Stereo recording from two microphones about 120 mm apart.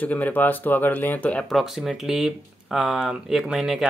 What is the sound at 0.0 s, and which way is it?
Speech, 15° left (ahead or behind).